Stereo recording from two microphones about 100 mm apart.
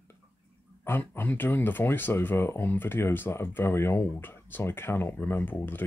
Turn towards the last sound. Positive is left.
turn(degrees=20)  # may be behind; listen again after turning